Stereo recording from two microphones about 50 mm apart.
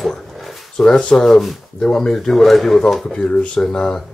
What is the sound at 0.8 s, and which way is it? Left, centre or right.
Speech, centre.